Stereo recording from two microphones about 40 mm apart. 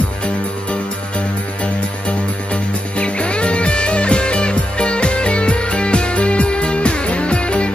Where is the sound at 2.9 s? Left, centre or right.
Left.